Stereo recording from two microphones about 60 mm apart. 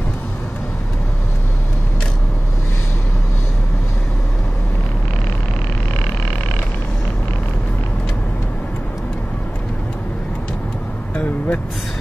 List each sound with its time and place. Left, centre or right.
11.1 s vehicle: left